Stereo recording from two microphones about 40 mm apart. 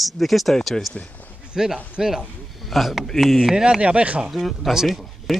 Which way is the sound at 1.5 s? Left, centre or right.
Centre.